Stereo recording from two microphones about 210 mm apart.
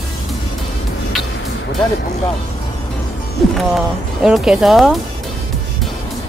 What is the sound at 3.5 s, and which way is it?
Speech, centre (ahead or behind).